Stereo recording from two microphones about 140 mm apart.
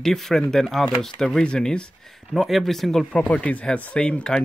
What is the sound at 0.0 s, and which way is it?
Speech, centre (ahead or behind).